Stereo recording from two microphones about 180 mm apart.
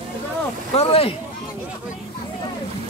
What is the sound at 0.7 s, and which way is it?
Speech, 35° left (ahead or behind).